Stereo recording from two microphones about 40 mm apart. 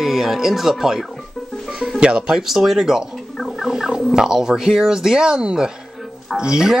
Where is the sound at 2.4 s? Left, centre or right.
Centre.